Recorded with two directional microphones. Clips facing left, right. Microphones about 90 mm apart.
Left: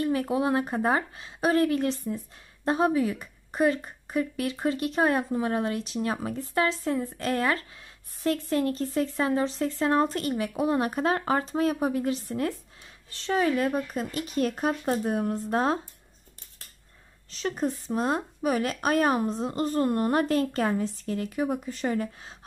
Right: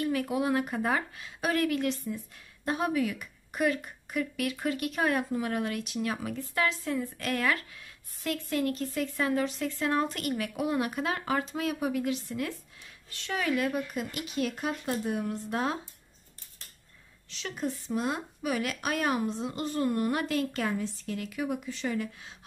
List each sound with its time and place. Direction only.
0.0 s speech: 30° left (ahead or behind)
17.3 s speech: 40° left (ahead or behind)